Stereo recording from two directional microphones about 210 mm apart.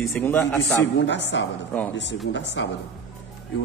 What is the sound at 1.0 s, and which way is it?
A man's voice, 60° left (ahead or behind).